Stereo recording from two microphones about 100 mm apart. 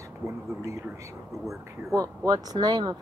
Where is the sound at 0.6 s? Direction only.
30° right (ahead or behind).